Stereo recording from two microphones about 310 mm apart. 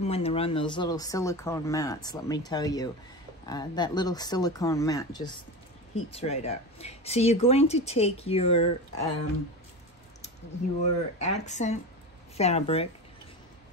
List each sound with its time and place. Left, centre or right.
0.0 s speech: centre
10.8 s speech: left